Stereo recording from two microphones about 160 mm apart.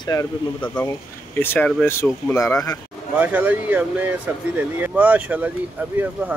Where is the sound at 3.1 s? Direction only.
10° right (ahead or behind).